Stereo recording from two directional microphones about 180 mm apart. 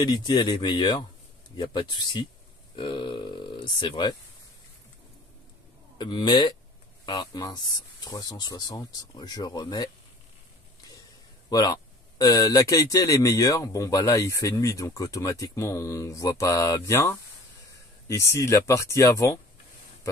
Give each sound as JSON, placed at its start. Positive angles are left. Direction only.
{"t": 0.0, "sound": "speech", "side_deg": 25}
{"t": 5.9, "sound": "speech", "side_deg": 25}
{"t": 11.5, "sound": "speech", "side_deg": 20}